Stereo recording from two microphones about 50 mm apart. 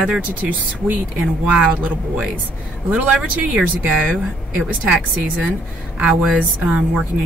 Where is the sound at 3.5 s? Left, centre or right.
Right.